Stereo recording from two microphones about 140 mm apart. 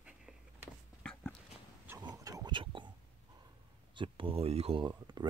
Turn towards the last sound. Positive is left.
turn(degrees=-40)  # may be behind; listen again after turning